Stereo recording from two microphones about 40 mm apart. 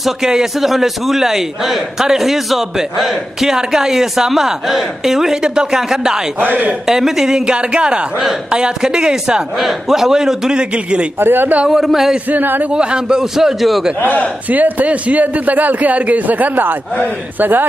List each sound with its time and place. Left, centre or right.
0.0 s a man's voice: centre
6.4 s a man's voice: right
6.9 s a man's voice: centre
9.6 s a man's voice: centre
10.6 s a woman's voice: right
11.1 s a man's voice: right
11.7 s a man's voice: centre
12.3 s a man's voice: right
12.7 s a man's voice: centre
14.5 s a man's voice: right